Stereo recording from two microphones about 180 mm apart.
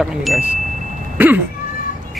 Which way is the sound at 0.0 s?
Centre (ahead or behind).